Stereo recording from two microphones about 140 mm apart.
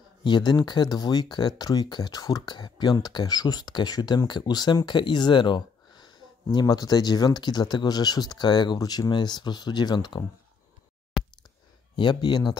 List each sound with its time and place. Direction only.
0.2 s speech: 30° left (ahead or behind)
12.0 s speech: 30° left (ahead or behind)